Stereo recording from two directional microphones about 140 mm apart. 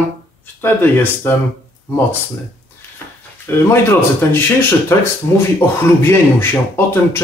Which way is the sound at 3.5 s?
15° left (ahead or behind).